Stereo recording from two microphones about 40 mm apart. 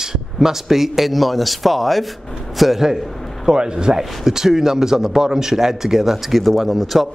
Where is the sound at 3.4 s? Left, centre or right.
Centre.